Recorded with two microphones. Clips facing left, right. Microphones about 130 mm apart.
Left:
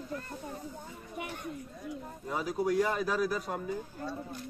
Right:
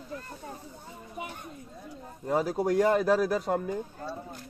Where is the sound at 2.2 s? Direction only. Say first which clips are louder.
Right 5 dB; 40° right (ahead or behind).